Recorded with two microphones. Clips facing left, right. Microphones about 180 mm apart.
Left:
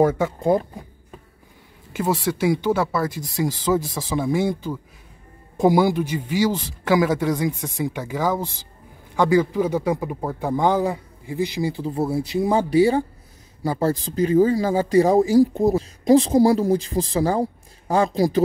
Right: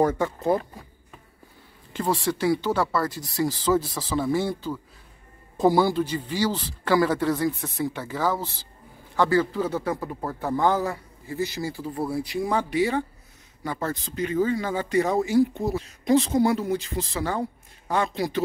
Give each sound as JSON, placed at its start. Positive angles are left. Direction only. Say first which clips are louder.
{"t": 0.0, "sound": "a man's voice", "louder": "left 4 dB", "side_deg": 10}
{"t": 1.9, "sound": "a man's voice", "louder": "left 3 dB", "side_deg": 10}